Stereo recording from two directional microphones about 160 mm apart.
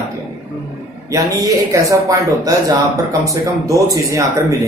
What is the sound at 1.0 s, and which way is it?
Speech, 20° right (ahead or behind).